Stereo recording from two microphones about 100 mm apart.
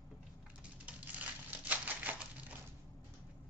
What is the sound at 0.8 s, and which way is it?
Crumpling, 15° right (ahead or behind).